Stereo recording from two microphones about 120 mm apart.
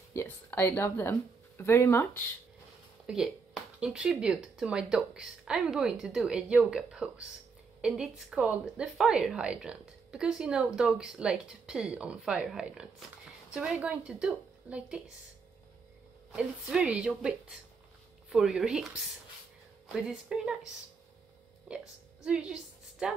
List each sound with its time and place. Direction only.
0.1 s speech: 20° left (ahead or behind)
3.1 s a woman's voice: 10° right (ahead or behind)
16.3 s a woman's voice: 5° right (ahead or behind)
21.6 s a woman's voice: 10° right (ahead or behind)